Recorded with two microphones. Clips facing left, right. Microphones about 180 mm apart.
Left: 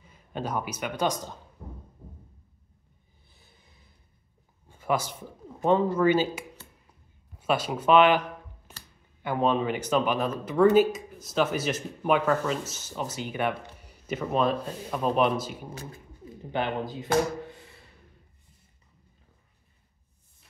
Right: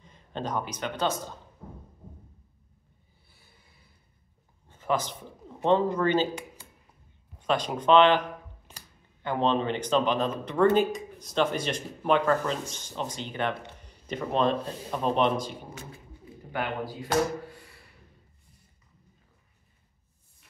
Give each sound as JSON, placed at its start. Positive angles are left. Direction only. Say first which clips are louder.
{"t": 0.0, "sound": "a man's voice", "louder": "even", "side_deg": 10}
{"t": 4.6, "sound": "a sound", "louder": "left 1 dB", "side_deg": 10}
{"t": 5.9, "sound": "speech", "louder": "left 2 dB", "side_deg": 10}
{"t": 9.2, "sound": "speech", "louder": "left 1 dB", "side_deg": 10}
{"t": 16.5, "sound": "speech", "louder": "left 2 dB", "side_deg": 20}